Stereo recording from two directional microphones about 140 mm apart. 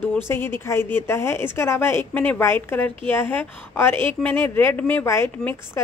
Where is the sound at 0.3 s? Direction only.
15° left (ahead or behind).